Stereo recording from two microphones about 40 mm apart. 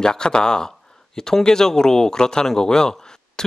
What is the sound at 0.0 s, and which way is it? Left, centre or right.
Speech, centre.